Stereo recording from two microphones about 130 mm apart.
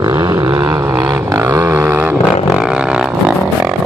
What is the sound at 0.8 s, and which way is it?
Vehicle, 30° right (ahead or behind).